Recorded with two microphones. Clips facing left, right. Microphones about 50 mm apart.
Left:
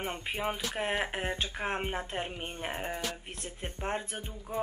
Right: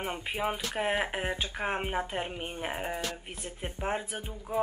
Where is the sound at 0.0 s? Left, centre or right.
Centre.